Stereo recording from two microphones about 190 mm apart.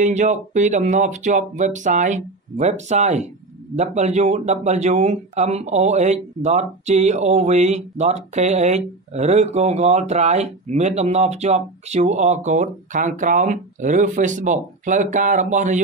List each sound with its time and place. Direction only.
0.0 s speech: 40° right (ahead or behind)